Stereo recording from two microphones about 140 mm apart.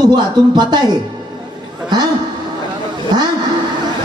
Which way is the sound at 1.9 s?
30° right (ahead or behind).